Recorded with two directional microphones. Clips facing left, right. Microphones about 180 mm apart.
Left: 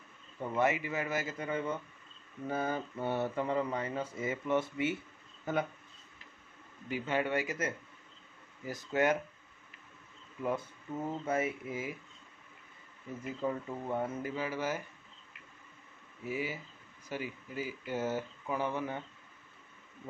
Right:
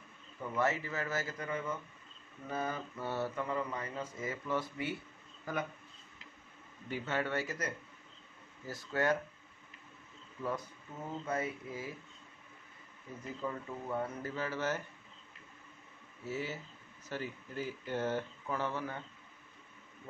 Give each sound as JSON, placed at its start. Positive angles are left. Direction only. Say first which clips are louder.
{"t": 0.4, "sound": "speech", "louder": "left 3 dB", "side_deg": 20}
{"t": 6.9, "sound": "speech", "louder": "left 3 dB", "side_deg": 15}
{"t": 11.1, "sound": "speech", "louder": "left 3 dB", "side_deg": 25}
{"t": 13.4, "sound": "speech", "louder": "left 5 dB", "side_deg": 25}
{"t": 16.3, "sound": "speech", "louder": "left 2 dB", "side_deg": 10}